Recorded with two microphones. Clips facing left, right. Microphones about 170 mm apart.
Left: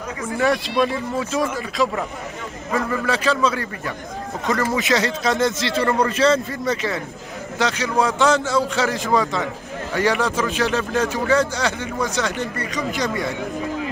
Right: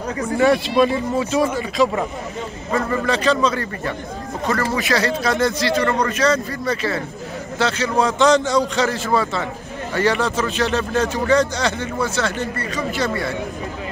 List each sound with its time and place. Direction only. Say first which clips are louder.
0.4 s speech: right 4 dB; centre (ahead or behind)
4.7 s speech: right 1 dB; 20° left (ahead or behind)